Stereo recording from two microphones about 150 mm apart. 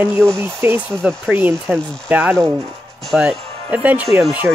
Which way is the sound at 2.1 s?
10° right (ahead or behind).